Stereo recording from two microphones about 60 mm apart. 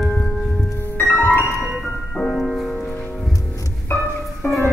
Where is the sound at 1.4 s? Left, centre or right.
Right.